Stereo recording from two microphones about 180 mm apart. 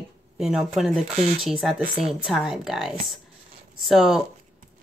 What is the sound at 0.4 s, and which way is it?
Speech, 5° right (ahead or behind).